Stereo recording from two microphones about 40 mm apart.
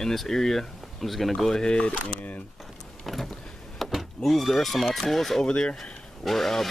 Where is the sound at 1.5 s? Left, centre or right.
Left.